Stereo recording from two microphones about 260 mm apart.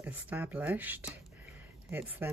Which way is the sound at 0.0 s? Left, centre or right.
Centre.